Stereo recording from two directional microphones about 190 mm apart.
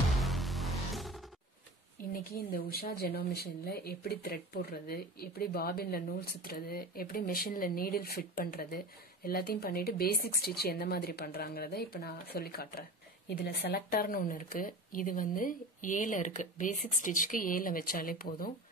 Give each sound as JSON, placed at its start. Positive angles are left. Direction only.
{"t": 0.1, "sound": "music", "side_deg": 0}
{"t": 2.1, "sound": "speech", "side_deg": 50}